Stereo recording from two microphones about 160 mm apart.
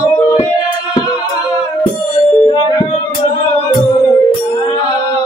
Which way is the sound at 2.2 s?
30° left (ahead or behind).